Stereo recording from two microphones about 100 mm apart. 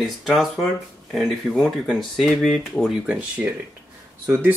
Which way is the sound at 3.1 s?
15° right (ahead or behind).